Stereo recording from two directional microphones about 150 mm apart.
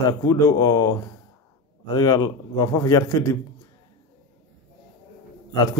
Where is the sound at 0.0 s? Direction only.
25° left (ahead or behind).